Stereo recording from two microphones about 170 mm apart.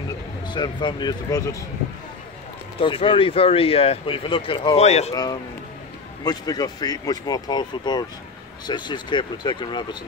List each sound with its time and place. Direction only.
0.5 s speech: 25° left (ahead or behind)
2.8 s speech: 30° left (ahead or behind)
5.1 s speech: 20° left (ahead or behind)